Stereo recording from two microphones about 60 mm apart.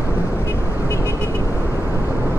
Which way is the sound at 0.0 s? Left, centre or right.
Left.